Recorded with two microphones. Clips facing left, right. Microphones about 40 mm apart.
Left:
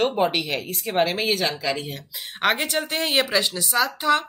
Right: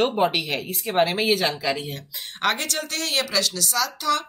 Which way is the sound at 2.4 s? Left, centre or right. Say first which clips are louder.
Left 2 dB; centre.